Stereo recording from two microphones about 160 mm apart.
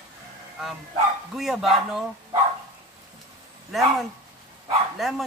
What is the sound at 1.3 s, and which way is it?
Speech, centre (ahead or behind).